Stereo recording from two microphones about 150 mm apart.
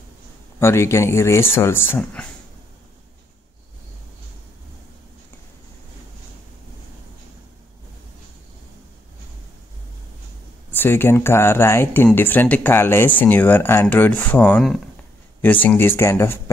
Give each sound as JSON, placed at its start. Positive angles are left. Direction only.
{"t": 0.6, "sound": "speech", "side_deg": 15}
{"t": 10.7, "sound": "speech", "side_deg": 15}